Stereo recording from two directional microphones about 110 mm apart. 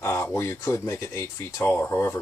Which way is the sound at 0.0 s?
25° left (ahead or behind).